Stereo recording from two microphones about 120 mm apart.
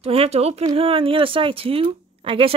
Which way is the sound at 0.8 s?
50° right (ahead or behind).